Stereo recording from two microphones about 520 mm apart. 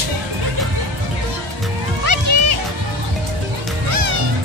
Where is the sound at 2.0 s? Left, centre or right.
Right.